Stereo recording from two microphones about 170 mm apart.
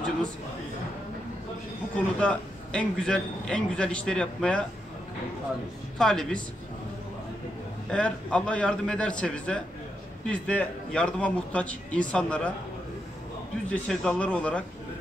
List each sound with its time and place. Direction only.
2.0 s a man's voice: 5° left (ahead or behind)
5.9 s a man's voice: 5° left (ahead or behind)
7.9 s a man's voice: 5° left (ahead or behind)
13.7 s a man's voice: 5° left (ahead or behind)